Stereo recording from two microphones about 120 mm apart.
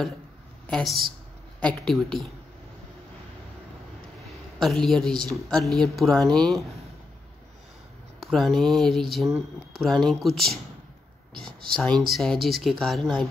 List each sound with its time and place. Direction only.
0.7 s speech: centre (ahead or behind)
4.6 s speech: centre (ahead or behind)
8.3 s speech: centre (ahead or behind)
9.2 s speech: 25° right (ahead or behind)
9.8 s speech: 5° left (ahead or behind)
11.9 s speech: centre (ahead or behind)